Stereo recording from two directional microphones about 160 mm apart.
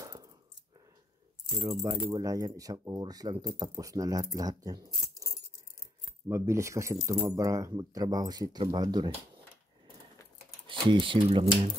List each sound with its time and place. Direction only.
0.0 s a sound: 20° right (ahead or behind)
1.6 s speech: 20° right (ahead or behind)
6.2 s speech: 15° right (ahead or behind)
10.7 s speech: 30° right (ahead or behind)